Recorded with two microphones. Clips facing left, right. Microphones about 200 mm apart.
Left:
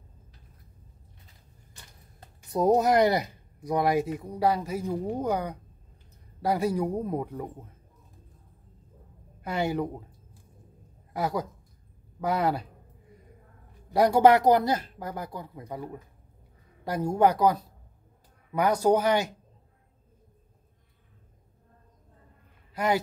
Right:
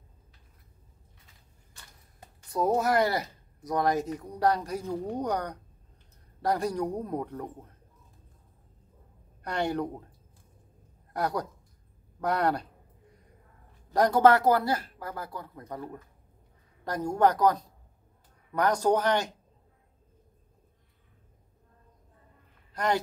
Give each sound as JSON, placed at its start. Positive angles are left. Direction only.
{"t": 2.4, "sound": "speech", "side_deg": 20}
{"t": 4.8, "sound": "speech", "side_deg": 15}
{"t": 5.1, "sound": "a man's voice", "side_deg": 5}
{"t": 9.4, "sound": "a man's voice", "side_deg": 5}
{"t": 11.1, "sound": "a man's voice", "side_deg": 0}
{"t": 13.8, "sound": "speech", "side_deg": 10}